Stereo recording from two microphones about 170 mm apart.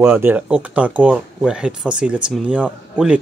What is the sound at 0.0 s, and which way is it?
Speech, 10° right (ahead or behind).